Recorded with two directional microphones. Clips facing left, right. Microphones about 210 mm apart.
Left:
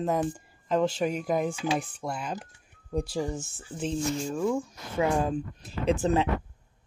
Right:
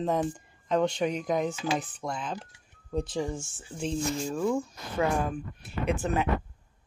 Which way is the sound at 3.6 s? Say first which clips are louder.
Left 1 dB; centre (ahead or behind).